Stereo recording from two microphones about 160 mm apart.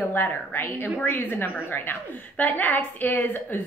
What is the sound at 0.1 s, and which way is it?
A woman's voice, 15° left (ahead or behind).